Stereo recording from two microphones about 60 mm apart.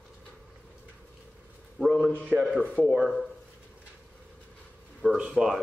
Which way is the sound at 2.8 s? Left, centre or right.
Right.